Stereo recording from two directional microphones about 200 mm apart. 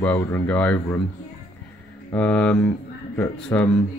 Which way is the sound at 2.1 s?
10° left (ahead or behind).